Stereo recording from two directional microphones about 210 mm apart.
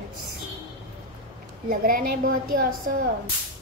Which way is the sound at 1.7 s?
45° right (ahead or behind).